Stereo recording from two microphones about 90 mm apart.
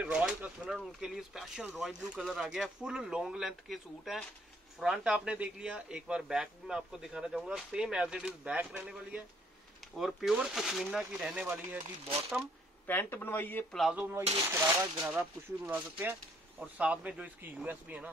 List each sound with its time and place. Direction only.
0.0 s speech: 10° right (ahead or behind)
9.9 s speech: 5° right (ahead or behind)
11.3 s speech: 20° right (ahead or behind)
12.8 s speech: 25° left (ahead or behind)
13.9 s speech: 20° right (ahead or behind)